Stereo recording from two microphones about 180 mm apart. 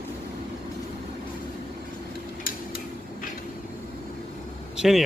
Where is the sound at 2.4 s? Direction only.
55° left (ahead or behind).